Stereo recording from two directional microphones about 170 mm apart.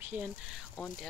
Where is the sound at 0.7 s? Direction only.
5° left (ahead or behind).